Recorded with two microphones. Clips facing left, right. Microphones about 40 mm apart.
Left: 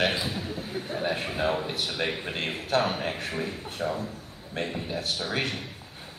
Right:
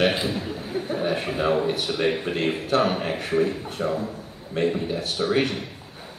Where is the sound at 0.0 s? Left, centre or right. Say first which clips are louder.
Right 5 dB; right.